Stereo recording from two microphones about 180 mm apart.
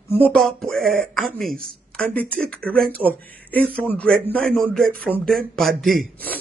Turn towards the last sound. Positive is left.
turn(degrees=5)  # may be behind; listen again after turning